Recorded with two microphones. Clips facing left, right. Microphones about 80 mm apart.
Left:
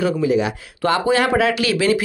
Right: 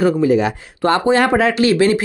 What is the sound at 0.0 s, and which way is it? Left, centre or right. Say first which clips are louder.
A woman's voice: right 4 dB; right.